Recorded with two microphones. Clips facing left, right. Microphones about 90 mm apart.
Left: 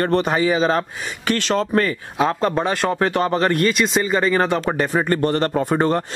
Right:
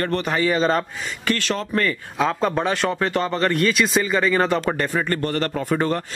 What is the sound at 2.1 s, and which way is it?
Speech, 5° left (ahead or behind).